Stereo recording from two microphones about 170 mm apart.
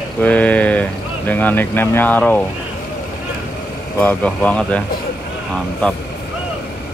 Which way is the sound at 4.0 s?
10° left (ahead or behind).